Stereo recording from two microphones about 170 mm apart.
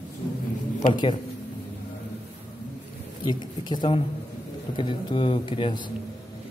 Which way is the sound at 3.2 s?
25° left (ahead or behind).